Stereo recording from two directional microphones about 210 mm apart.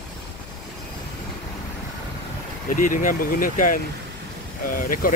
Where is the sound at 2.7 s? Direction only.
40° left (ahead or behind).